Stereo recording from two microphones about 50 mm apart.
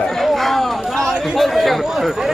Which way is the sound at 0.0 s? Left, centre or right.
Centre.